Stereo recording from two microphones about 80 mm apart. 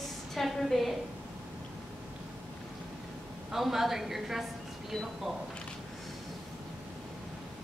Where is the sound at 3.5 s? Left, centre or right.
Centre.